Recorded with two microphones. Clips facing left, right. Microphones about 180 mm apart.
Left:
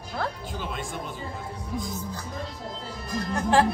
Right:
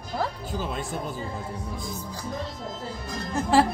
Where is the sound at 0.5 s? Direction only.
40° right (ahead or behind).